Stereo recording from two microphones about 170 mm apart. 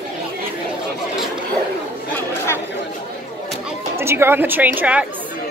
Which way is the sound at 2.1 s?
15° left (ahead or behind).